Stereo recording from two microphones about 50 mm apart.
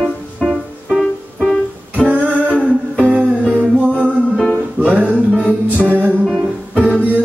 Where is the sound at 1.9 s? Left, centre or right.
Right.